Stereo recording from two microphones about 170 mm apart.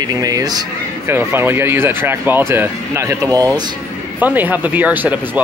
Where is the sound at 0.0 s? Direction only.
20° right (ahead or behind).